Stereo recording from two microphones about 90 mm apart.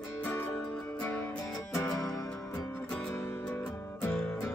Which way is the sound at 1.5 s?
35° left (ahead or behind).